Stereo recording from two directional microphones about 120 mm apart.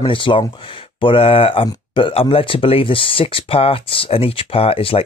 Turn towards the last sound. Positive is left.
turn(degrees=50)  # may be behind; listen again after turning